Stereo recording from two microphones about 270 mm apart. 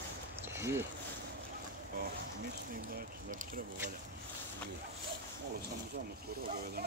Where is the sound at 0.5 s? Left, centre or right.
Centre.